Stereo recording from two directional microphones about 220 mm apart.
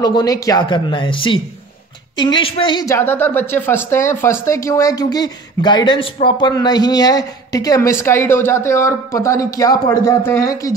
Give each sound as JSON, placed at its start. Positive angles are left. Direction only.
{"t": 0.0, "sound": "a woman's voice", "side_deg": 15}